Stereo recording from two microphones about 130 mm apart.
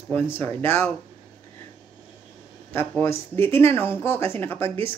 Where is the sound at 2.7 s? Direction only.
20° left (ahead or behind).